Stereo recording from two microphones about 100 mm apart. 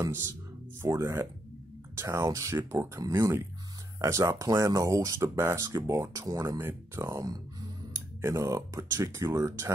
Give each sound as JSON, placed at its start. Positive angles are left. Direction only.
{"t": 0.8, "sound": "speech", "side_deg": -30}